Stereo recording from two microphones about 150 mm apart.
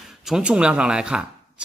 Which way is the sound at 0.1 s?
5° right (ahead or behind).